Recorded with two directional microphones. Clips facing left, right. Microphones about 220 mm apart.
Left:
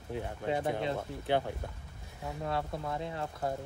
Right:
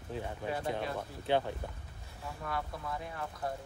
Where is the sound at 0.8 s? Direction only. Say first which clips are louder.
Left 3 dB; 20° left (ahead or behind).